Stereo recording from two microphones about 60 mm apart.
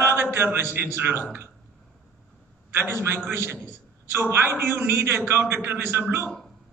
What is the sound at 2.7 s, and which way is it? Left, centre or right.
A man's voice, right.